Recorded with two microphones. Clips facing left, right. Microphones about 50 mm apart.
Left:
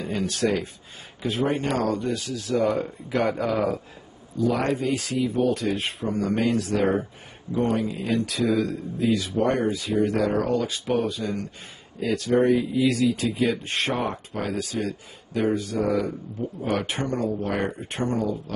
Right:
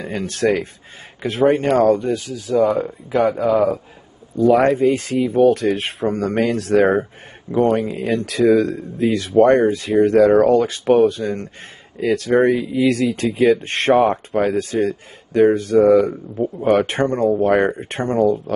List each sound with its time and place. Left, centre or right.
0.0 s speech: right
1.2 s speech: right
2.0 s speech: right
2.3 s speech: centre
4.4 s speech: right
4.7 s speech: right
5.5 s speech: right
7.7 s speech: right
8.1 s speech: right
10.7 s speech: right
12.4 s speech: right
16.6 s speech: right
17.5 s speech: right
17.7 s speech: right